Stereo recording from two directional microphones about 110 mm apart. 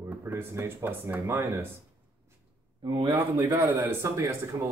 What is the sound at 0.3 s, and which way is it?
Speech, 20° right (ahead or behind).